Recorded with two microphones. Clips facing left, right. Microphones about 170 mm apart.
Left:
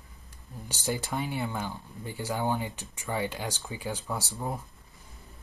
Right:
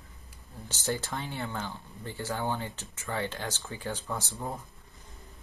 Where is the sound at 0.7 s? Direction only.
10° left (ahead or behind).